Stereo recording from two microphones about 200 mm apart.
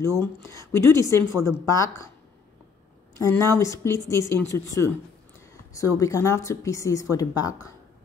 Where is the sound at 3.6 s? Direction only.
15° left (ahead or behind).